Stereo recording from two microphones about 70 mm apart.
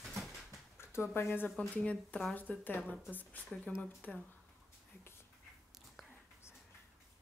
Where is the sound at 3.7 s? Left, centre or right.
Centre.